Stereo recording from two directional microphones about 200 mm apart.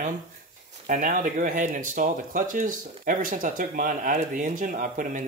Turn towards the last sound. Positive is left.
turn(degrees=-40)  # may be behind; listen again after turning